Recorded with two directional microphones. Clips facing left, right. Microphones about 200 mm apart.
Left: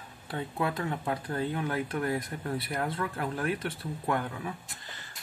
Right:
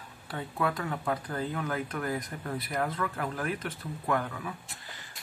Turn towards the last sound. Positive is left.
turn(degrees=30)  # may be behind; listen again after turning